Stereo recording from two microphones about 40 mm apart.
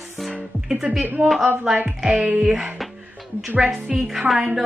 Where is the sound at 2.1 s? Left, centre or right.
Right.